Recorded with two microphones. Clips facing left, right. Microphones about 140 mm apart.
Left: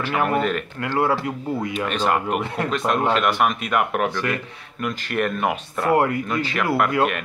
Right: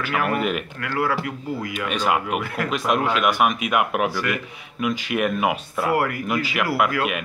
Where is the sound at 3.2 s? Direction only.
5° right (ahead or behind).